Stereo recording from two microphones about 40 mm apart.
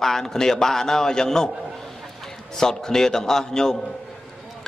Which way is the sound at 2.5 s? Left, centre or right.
Centre.